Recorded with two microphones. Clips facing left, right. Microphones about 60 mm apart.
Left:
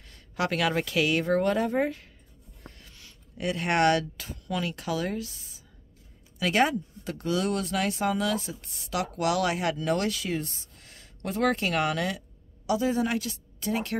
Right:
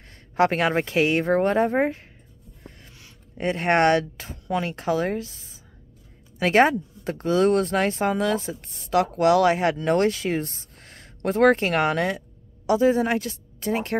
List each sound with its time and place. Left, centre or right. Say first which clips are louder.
0.1 s speech: right 8 dB; right
6.4 s a woman's voice: right 6 dB; right